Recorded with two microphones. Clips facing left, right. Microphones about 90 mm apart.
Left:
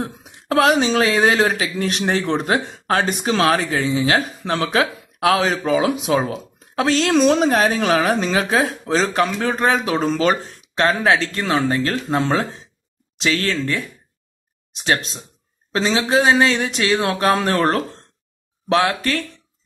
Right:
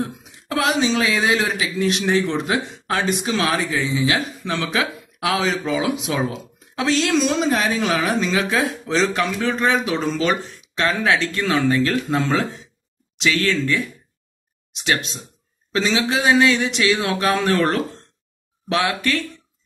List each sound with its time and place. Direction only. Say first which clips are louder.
0.0 s speech: right 1 dB; 40° left (ahead or behind)